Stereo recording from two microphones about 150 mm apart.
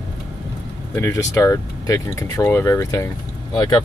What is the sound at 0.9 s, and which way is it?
Speech, 20° left (ahead or behind).